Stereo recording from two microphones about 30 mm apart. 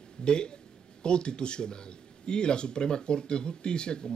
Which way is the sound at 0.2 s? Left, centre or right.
Left.